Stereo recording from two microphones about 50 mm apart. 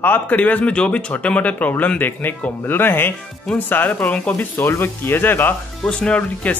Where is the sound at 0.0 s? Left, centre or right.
Left.